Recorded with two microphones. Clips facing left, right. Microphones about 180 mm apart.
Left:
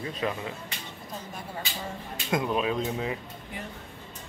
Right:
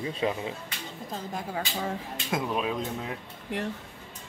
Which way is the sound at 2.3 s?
Centre (ahead or behind).